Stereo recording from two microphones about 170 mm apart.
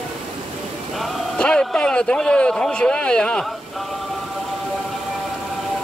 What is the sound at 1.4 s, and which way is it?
Speech, 5° left (ahead or behind).